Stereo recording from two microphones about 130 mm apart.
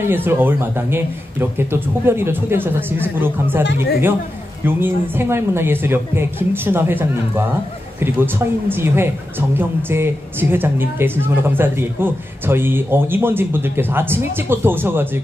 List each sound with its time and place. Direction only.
0.0 s a woman's voice: 15° right (ahead or behind)